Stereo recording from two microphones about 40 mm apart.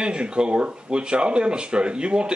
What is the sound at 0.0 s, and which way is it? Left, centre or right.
Speech, right.